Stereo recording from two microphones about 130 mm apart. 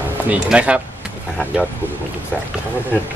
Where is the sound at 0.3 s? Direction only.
10° right (ahead or behind).